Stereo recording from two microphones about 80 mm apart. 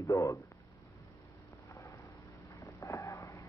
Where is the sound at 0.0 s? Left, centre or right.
Left.